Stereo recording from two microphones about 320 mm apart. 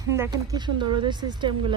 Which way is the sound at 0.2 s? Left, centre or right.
Centre.